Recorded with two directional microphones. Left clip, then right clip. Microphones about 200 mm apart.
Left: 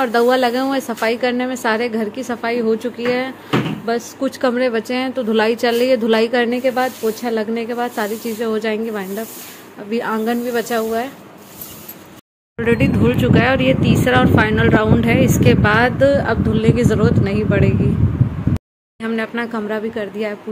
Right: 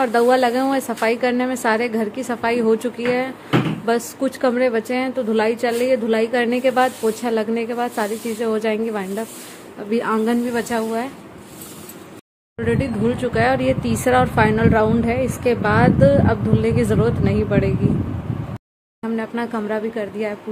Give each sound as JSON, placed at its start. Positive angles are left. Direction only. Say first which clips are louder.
{"t": 0.0, "sound": "speech", "louder": "left 1 dB", "side_deg": 5}
{"t": 3.1, "sound": "a woman's voice", "louder": "left 1 dB", "side_deg": 5}
{"t": 12.5, "sound": "speech", "louder": "left 5 dB", "side_deg": 10}
{"t": 19.0, "sound": "speech", "louder": "left 3 dB", "side_deg": 0}